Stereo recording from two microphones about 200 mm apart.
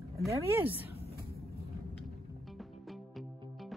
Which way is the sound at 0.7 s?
30° left (ahead or behind).